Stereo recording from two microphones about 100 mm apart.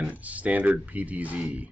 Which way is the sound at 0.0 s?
15° right (ahead or behind).